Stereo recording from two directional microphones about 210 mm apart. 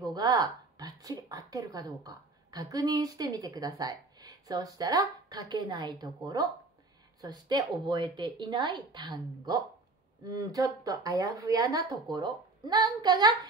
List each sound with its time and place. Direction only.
0.0 s a woman's voice: 20° right (ahead or behind)